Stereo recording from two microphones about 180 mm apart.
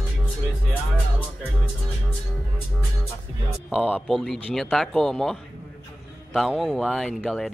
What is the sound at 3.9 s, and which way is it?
Speech, centre (ahead or behind).